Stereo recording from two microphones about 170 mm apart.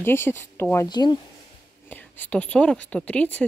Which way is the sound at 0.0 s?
15° left (ahead or behind).